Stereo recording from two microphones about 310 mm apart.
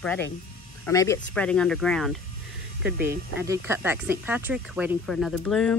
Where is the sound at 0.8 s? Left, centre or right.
Centre.